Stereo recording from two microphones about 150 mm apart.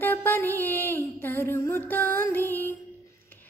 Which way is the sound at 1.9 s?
15° left (ahead or behind).